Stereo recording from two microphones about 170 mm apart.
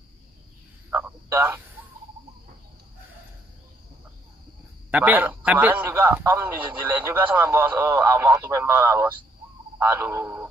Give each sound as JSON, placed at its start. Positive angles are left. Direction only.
{"t": 0.8, "sound": "frog", "side_deg": -10}
{"t": 4.9, "sound": "a man's voice", "side_deg": -10}